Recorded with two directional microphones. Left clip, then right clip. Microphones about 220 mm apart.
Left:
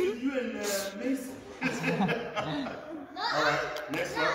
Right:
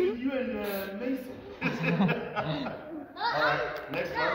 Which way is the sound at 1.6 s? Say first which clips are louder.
Even; 15° right (ahead or behind).